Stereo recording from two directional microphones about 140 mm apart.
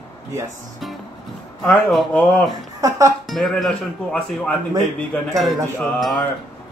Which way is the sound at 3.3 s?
5° left (ahead or behind).